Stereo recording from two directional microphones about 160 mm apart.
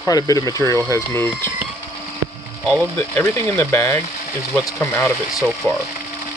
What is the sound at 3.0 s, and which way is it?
Speech, 15° left (ahead or behind).